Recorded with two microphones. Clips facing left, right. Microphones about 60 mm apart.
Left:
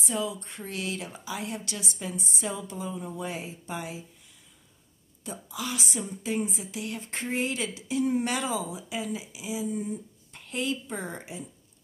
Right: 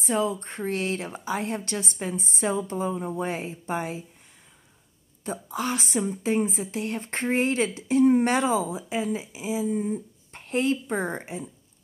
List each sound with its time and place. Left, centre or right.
0.0 s a woman's voice: right
5.2 s a woman's voice: right